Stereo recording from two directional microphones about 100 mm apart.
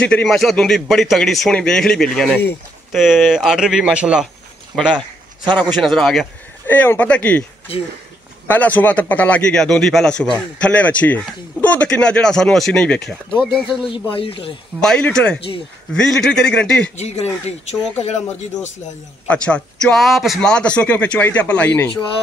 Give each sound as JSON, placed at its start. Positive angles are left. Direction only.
{"t": 0.0, "sound": "speech", "side_deg": 10}
{"t": 2.9, "sound": "speech", "side_deg": 0}
{"t": 4.9, "sound": "a sound", "side_deg": -50}
{"t": 5.8, "sound": "speech", "side_deg": 5}
{"t": 6.7, "sound": "a man's voice", "side_deg": 15}
{"t": 8.5, "sound": "a man's voice", "side_deg": 15}
{"t": 13.7, "sound": "speech", "side_deg": 60}
{"t": 14.8, "sound": "a man's voice", "side_deg": 5}
{"t": 17.0, "sound": "speech", "side_deg": 90}
{"t": 19.2, "sound": "a man's voice", "side_deg": 10}